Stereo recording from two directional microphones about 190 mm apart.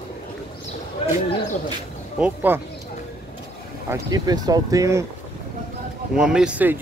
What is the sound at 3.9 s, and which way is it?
Speech, 20° right (ahead or behind).